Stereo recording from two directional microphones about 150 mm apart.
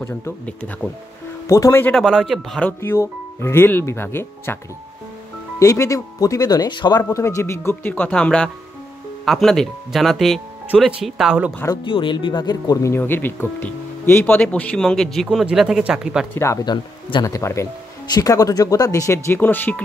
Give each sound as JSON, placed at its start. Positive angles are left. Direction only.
{"t": 0.0, "sound": "speech", "side_deg": 15}
{"t": 2.0, "sound": "speech", "side_deg": 0}
{"t": 2.8, "sound": "speech", "side_deg": 15}
{"t": 5.6, "sound": "speech", "side_deg": 20}
{"t": 11.6, "sound": "speech", "side_deg": 30}
{"t": 16.3, "sound": "speech", "side_deg": 20}